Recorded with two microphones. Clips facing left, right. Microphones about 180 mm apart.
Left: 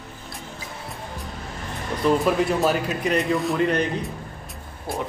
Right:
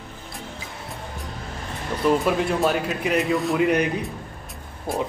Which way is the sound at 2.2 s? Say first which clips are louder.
Left 1 dB; centre (ahead or behind).